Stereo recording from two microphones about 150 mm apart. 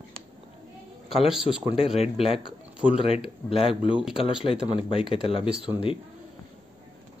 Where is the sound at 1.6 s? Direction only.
40° left (ahead or behind).